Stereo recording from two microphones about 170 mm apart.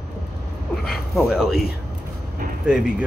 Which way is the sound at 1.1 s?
Centre (ahead or behind).